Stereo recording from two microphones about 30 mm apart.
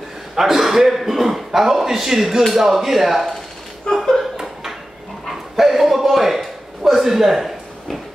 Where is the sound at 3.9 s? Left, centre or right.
Left.